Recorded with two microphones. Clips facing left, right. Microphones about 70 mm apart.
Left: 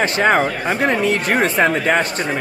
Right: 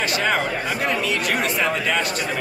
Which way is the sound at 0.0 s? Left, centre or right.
Left.